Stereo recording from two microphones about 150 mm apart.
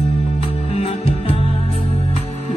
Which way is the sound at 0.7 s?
40° left (ahead or behind).